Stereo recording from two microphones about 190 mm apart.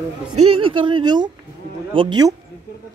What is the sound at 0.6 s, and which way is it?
Speech, 25° right (ahead or behind).